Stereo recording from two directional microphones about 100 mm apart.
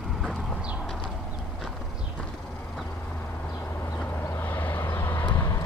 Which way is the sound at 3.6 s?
25° left (ahead or behind).